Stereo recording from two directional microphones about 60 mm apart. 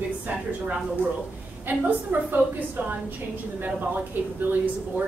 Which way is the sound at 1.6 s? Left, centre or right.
Right.